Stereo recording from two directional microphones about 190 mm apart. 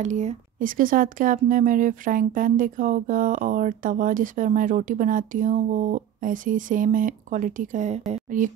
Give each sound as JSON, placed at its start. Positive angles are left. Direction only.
{"t": 0.0, "sound": "speech", "side_deg": -40}
{"t": 8.1, "sound": "music", "side_deg": -45}